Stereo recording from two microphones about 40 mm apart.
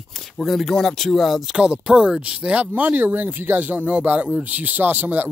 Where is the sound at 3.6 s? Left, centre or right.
Right.